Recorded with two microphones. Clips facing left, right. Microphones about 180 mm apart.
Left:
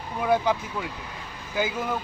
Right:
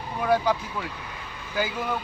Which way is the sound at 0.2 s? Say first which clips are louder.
Even; 15° left (ahead or behind).